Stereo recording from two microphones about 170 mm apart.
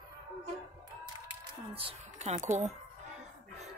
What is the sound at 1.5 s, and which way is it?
Speech, 30° right (ahead or behind).